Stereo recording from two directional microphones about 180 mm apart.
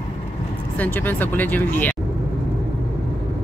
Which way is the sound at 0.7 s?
10° left (ahead or behind).